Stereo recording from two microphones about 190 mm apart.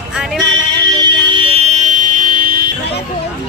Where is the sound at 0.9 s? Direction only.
25° right (ahead or behind); by 2.6 s 45° right (ahead or behind).